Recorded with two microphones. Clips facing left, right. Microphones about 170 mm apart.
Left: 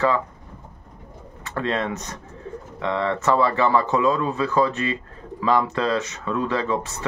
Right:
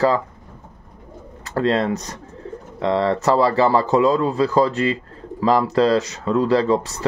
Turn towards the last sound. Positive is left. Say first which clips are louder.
# right 7 dB
turn(degrees=-35)  # may be behind; listen again after turning